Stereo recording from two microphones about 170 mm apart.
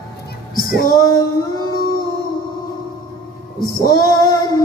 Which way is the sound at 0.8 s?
20° left (ahead or behind).